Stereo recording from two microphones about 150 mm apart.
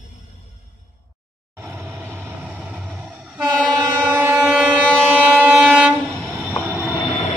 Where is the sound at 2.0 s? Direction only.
10° right (ahead or behind).